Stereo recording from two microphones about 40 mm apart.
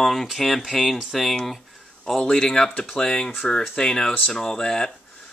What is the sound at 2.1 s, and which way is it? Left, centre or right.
Speech, centre.